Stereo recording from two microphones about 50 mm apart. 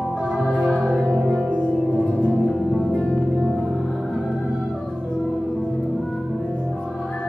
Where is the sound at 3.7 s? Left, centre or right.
Centre.